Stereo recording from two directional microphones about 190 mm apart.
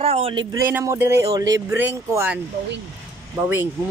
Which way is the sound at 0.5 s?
15° right (ahead or behind).